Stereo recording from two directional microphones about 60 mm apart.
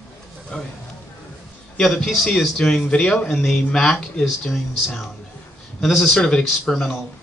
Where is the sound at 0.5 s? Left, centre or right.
Centre.